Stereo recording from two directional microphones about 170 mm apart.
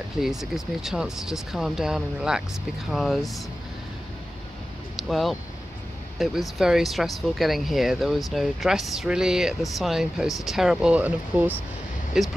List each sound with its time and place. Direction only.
0.2 s speech: centre (ahead or behind)
4.9 s speech: centre (ahead or behind)